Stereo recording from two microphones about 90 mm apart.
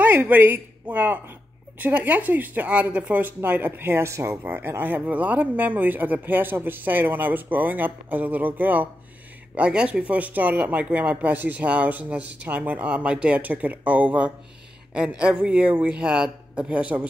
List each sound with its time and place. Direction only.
0.0 s speech: 20° right (ahead or behind)